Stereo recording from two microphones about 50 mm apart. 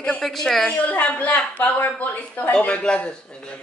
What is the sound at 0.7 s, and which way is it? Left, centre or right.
Speech, left.